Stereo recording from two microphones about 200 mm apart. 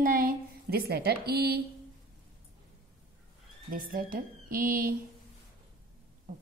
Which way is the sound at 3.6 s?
45° right (ahead or behind).